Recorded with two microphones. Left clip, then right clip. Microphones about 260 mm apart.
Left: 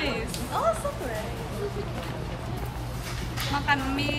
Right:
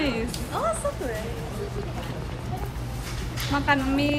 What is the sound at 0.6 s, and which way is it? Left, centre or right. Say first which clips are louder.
Music: left 1 dB; left.